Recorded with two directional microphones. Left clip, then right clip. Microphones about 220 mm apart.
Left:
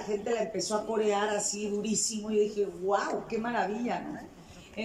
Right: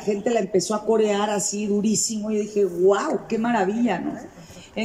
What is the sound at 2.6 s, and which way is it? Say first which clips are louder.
Speech: right 10 dB; 50° right (ahead or behind).